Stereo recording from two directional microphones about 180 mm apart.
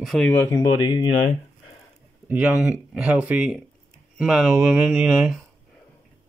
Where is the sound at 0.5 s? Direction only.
25° left (ahead or behind).